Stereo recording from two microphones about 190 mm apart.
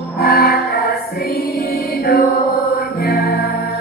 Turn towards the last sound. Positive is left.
turn(degrees=55)  # may be behind; listen again after turning